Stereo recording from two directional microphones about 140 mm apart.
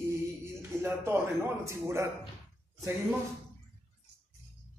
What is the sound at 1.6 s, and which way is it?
Speech, 20° right (ahead or behind).